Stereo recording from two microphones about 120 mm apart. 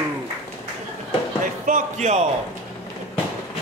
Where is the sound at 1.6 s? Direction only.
80° right.